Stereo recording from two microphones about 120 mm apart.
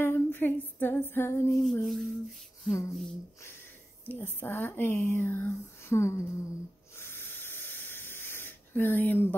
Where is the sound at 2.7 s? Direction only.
25° left (ahead or behind).